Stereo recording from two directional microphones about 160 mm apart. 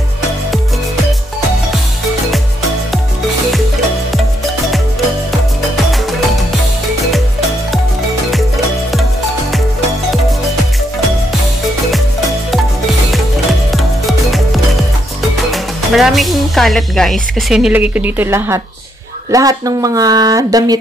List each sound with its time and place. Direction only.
13.1 s music: centre (ahead or behind)
15.5 s speech: centre (ahead or behind); by 20.7 s 25° right (ahead or behind)